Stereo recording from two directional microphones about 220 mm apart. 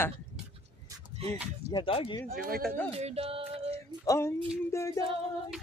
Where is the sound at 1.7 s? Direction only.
25° left (ahead or behind).